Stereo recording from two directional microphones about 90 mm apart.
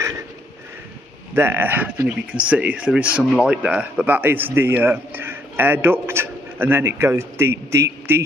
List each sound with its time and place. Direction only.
1.3 s a man's voice: 25° right (ahead or behind)